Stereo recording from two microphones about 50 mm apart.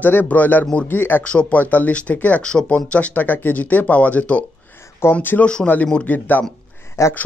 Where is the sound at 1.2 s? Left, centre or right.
Left.